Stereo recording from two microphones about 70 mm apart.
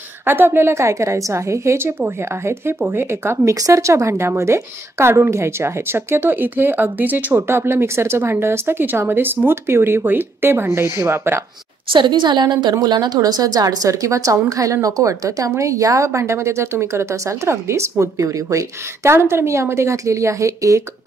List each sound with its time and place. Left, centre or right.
0.2 s speech: right
3.5 s a woman's voice: right
7.4 s speech: right
12.0 s a woman's voice: right
19.1 s a woman's voice: right